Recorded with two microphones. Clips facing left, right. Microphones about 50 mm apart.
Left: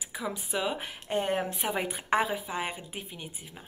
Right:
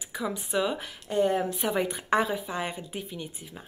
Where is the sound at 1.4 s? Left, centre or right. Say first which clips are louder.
Right 3 dB; centre.